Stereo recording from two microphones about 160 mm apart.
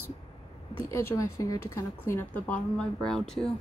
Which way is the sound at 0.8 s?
20° left (ahead or behind).